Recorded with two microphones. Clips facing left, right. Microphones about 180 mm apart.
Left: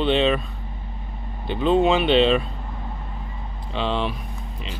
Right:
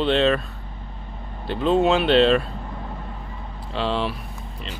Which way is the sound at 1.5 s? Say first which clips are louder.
Even; centre (ahead or behind).